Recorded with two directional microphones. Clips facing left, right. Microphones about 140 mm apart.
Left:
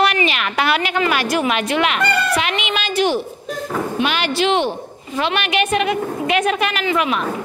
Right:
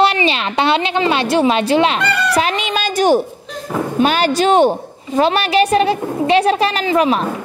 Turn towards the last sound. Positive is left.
turn(degrees=-35)  # may be behind; listen again after turning